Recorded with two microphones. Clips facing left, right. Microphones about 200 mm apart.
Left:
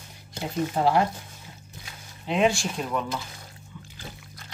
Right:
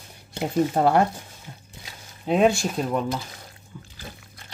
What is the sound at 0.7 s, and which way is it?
Speech, 50° right (ahead or behind).